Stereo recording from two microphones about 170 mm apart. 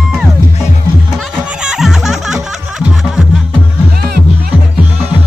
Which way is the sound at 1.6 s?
5° right (ahead or behind).